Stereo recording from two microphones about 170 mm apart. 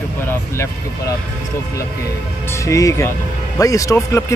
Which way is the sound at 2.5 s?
20° left (ahead or behind).